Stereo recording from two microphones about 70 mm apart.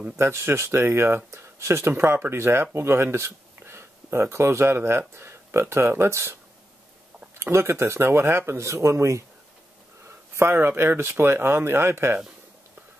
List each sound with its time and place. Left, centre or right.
0.2 s speech: right
7.3 s speech: right